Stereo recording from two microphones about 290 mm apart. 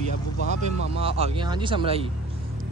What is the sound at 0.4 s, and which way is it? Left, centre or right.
Speech, left.